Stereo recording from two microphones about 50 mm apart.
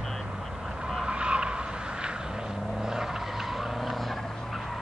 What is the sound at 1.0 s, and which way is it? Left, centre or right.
Vehicle, right.